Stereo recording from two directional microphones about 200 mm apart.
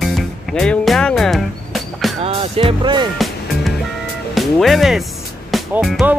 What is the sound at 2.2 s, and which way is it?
Speech, 30° right (ahead or behind).